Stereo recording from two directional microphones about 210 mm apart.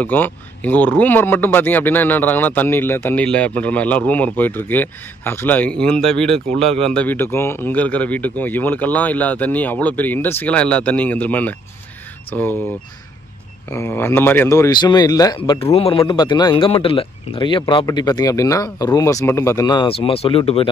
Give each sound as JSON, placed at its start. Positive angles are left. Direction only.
{"t": 0.0, "sound": "speech", "side_deg": 10}
{"t": 13.7, "sound": "speech", "side_deg": 10}